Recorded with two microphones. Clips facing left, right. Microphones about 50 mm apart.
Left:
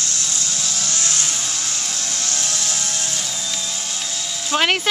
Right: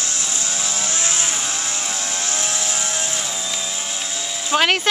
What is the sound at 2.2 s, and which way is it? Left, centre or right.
Vehicle, centre.